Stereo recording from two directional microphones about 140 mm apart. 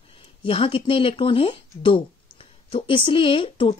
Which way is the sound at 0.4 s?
40° left (ahead or behind).